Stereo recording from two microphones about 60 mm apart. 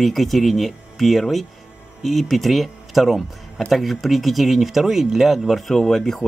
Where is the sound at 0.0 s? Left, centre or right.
Centre.